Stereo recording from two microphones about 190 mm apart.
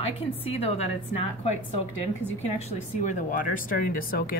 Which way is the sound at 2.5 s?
35° left (ahead or behind).